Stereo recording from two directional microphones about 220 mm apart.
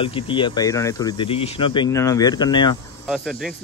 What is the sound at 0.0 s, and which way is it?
Speech, 25° left (ahead or behind).